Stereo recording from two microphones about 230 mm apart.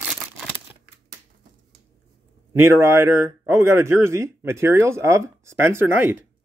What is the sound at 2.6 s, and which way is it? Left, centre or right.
Speech, centre.